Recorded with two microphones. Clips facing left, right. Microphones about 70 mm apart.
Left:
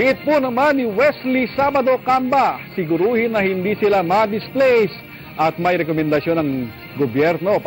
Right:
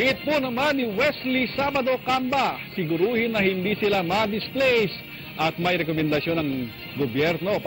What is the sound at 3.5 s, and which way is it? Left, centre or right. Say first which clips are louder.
Speech: left 6 dB; left.